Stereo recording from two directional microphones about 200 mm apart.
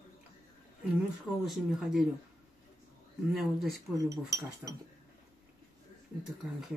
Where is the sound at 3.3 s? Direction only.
Centre (ahead or behind).